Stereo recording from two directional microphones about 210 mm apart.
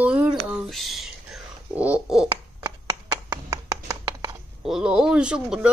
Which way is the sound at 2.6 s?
15° right (ahead or behind).